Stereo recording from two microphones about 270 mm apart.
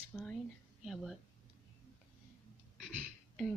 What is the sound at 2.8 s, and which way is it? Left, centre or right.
Beatboxing, centre.